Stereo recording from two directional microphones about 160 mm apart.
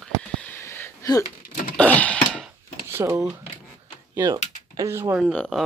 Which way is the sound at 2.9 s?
15° right (ahead or behind).